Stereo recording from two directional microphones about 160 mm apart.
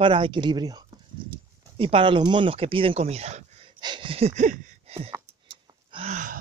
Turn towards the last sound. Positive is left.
turn(degrees=-35)  # may be behind; listen again after turning